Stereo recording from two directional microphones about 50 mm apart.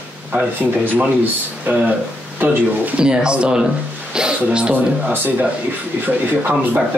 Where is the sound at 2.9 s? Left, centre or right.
Centre.